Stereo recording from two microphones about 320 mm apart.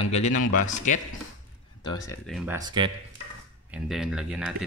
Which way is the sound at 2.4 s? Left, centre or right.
Centre.